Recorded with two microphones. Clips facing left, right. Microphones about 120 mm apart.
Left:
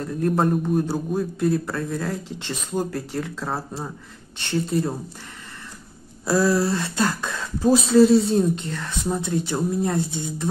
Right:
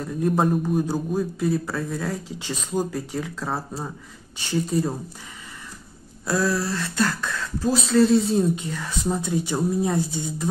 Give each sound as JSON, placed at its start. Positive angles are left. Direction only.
{"t": 0.0, "sound": "a man's voice", "side_deg": -5}
{"t": 6.2, "sound": "speech", "side_deg": 10}
{"t": 7.9, "sound": "a man's voice", "side_deg": 5}